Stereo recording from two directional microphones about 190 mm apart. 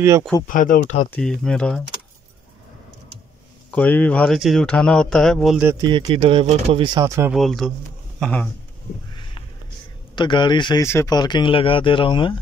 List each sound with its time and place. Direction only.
0.5 s speech: 45° left (ahead or behind)
1.1 s speech: 5° left (ahead or behind)
3.7 s speech: 10° left (ahead or behind)
5.7 s speech: 20° right (ahead or behind)
7.3 s speech: centre (ahead or behind)
9.1 s a sound: 25° left (ahead or behind)
10.1 s speech: 25° left (ahead or behind)